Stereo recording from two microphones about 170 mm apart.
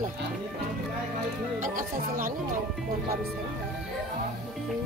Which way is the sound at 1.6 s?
50° right (ahead or behind).